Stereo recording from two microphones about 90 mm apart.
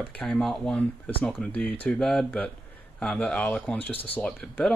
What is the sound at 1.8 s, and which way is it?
Speech, 10° left (ahead or behind).